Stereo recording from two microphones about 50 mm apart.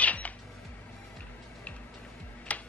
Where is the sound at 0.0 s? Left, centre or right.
Left.